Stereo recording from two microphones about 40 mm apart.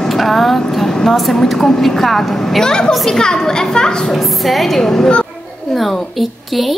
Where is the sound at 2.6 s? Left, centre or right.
Centre.